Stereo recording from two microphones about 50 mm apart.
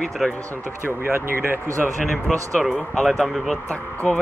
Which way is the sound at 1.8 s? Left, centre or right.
Left.